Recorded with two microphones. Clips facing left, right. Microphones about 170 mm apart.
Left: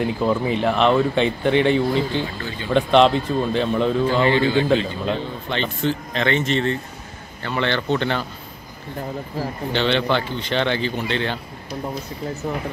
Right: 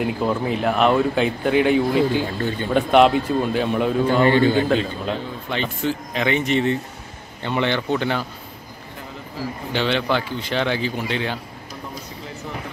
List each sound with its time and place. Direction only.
0.0 s speech: 5° right (ahead or behind)
4.2 s a man's voice: 45° right (ahead or behind)
5.0 s speech: 5° right (ahead or behind)
9.7 s speech: 5° right (ahead or behind)